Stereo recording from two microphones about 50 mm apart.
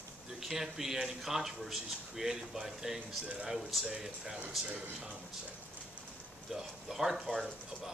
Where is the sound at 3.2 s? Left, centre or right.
Right.